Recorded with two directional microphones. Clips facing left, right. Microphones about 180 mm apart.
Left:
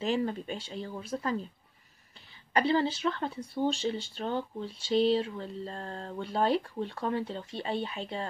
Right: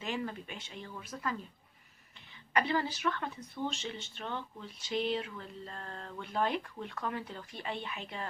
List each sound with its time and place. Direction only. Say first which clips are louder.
0.0 s speech: left 8 dB; 30° left (ahead or behind)
2.5 s speech: left 5 dB; 30° left (ahead or behind)